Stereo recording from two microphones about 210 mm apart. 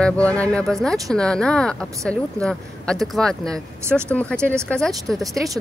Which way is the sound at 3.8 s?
10° right (ahead or behind).